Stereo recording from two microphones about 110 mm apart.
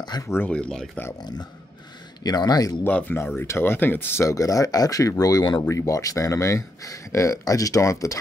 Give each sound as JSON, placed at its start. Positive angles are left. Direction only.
{"t": 0.3, "sound": "speech", "side_deg": 15}
{"t": 2.2, "sound": "speech", "side_deg": 35}
{"t": 2.8, "sound": "speech", "side_deg": 15}